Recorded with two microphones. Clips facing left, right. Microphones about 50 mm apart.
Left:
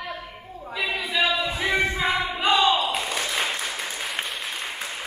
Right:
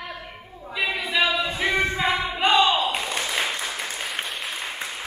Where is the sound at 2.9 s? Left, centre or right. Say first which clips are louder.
Even; centre.